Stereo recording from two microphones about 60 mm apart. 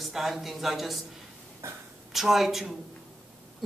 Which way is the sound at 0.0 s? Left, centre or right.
Centre.